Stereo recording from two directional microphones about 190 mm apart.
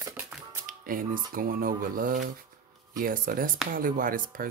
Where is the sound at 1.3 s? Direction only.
50° right (ahead or behind).